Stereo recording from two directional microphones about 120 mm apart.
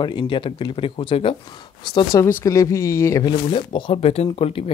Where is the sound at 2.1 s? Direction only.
25° left (ahead or behind).